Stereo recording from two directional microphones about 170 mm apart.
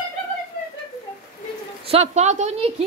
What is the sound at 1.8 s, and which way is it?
Speech, 40° right (ahead or behind).